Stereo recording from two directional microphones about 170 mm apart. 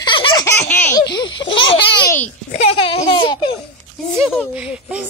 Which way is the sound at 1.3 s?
30° left (ahead or behind).